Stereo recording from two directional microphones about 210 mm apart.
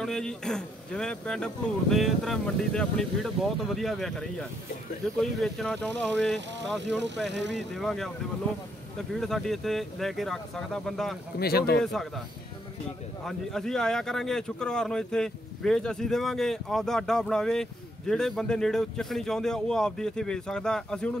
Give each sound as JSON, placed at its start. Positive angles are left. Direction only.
{"t": 0.0, "sound": "speech", "side_deg": 0}
{"t": 7.2, "sound": "speech", "side_deg": -55}
{"t": 7.5, "sound": "speech", "side_deg": 0}
{"t": 9.1, "sound": "speech", "side_deg": 0}
{"t": 11.3, "sound": "speech", "side_deg": 50}
{"t": 11.8, "sound": "speech", "side_deg": 0}
{"t": 13.2, "sound": "speech", "side_deg": 0}